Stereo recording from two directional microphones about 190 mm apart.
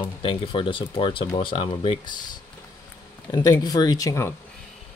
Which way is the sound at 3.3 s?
20° left (ahead or behind).